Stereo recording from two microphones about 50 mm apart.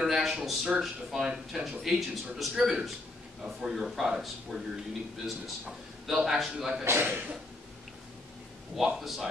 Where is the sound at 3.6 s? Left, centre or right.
Centre.